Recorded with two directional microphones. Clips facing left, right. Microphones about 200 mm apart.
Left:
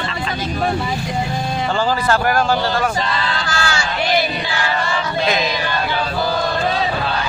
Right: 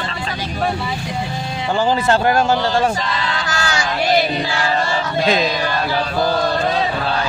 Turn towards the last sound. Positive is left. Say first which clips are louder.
# right 2 dB
turn(degrees=-30)  # may be behind; listen again after turning